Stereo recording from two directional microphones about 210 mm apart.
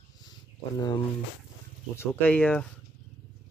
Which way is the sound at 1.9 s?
10° left (ahead or behind).